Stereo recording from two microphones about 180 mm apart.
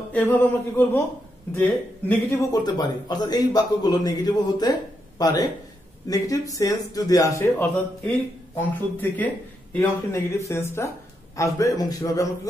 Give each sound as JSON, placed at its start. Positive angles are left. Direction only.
{"t": 0.1, "sound": "a man's voice", "side_deg": 10}
{"t": 2.5, "sound": "a man's voice", "side_deg": 20}